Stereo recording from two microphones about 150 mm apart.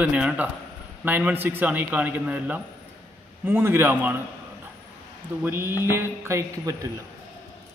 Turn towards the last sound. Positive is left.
turn(degrees=-20)  # may be behind; listen again after turning